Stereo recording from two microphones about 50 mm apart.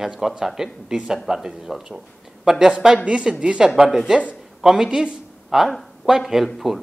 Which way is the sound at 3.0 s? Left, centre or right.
Right.